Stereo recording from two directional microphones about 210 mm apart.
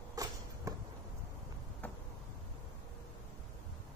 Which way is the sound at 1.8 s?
5° left (ahead or behind).